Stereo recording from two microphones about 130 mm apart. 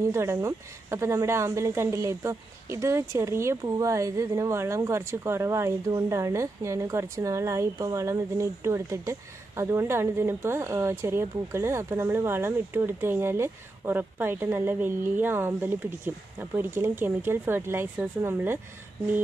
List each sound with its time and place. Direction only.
0.0 s speech: 20° right (ahead or behind)